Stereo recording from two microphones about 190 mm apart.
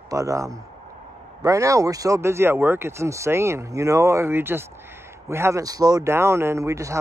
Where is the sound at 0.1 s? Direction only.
15° right (ahead or behind).